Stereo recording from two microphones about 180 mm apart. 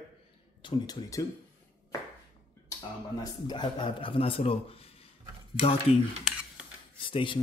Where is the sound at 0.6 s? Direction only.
25° left (ahead or behind).